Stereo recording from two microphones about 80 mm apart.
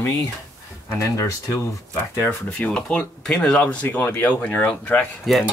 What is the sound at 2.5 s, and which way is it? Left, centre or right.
Speech, centre.